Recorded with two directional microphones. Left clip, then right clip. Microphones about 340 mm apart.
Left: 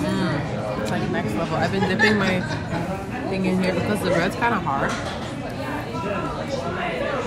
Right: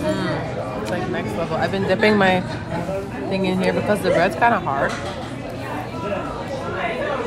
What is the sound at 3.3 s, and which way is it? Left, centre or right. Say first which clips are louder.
Speech: right 4 dB; right.